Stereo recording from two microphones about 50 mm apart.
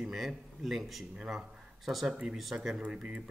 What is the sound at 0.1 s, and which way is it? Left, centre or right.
Speech, centre.